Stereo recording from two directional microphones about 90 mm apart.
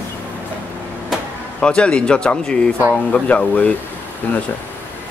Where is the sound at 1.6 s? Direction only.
10° left (ahead or behind).